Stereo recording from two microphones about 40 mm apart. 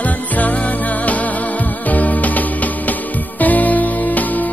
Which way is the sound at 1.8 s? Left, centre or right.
Left.